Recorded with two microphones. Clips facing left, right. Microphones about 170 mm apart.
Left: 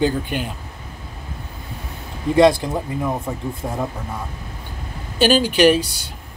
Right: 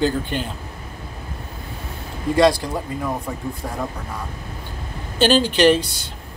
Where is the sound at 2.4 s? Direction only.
20° left (ahead or behind).